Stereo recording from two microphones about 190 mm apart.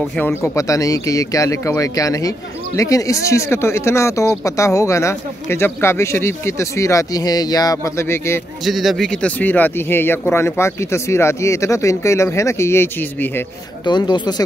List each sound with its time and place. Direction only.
0.2 s speech: 10° left (ahead or behind)
8.6 s speech: centre (ahead or behind)
13.8 s speech: 25° left (ahead or behind)